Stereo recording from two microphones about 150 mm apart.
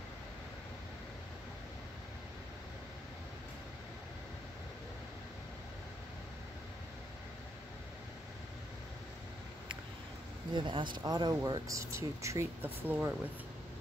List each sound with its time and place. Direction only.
10.5 s speech: 30° right (ahead or behind); by 13.1 s 10° right (ahead or behind)